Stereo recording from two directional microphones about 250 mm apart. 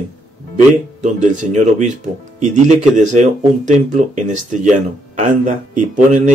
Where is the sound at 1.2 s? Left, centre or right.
Right.